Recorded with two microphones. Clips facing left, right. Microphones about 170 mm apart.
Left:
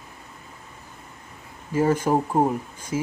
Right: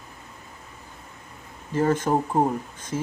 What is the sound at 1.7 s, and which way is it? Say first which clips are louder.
Speech: left 1 dB; 10° left (ahead or behind).